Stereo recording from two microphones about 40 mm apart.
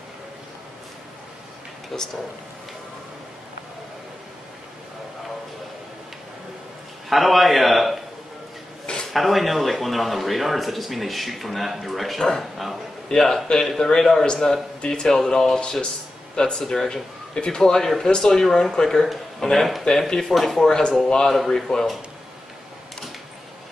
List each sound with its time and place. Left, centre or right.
1.9 s speech: centre
7.1 s a man's voice: centre
9.0 s a man's voice: centre; by 17.6 s left
17.6 s speech: centre